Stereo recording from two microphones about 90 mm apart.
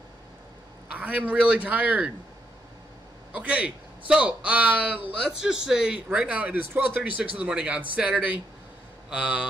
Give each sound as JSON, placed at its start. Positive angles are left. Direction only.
{"t": 0.9, "sound": "a man's voice", "side_deg": -15}
{"t": 3.3, "sound": "a man's voice", "side_deg": -15}